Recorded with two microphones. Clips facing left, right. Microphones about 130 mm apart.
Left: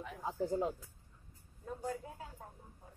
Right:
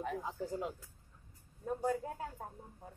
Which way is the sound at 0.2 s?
30° left (ahead or behind).